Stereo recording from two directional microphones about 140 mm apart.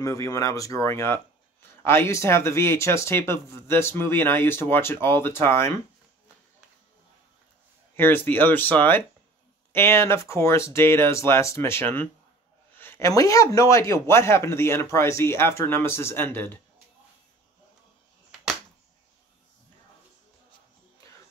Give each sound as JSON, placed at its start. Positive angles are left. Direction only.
{"t": 0.0, "sound": "a man's voice", "side_deg": 25}
{"t": 7.9, "sound": "a man's voice", "side_deg": 15}